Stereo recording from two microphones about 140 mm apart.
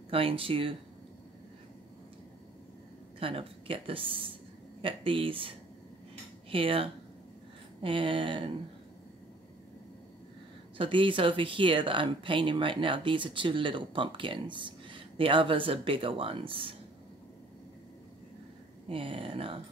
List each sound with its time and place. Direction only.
0.1 s speech: 40° right (ahead or behind)
3.2 s a woman's voice: 40° right (ahead or behind)
6.5 s speech: 40° right (ahead or behind)
10.8 s speech: 35° right (ahead or behind)
18.9 s speech: 40° right (ahead or behind)